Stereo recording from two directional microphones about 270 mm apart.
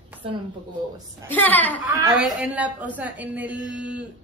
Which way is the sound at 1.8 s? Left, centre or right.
Centre.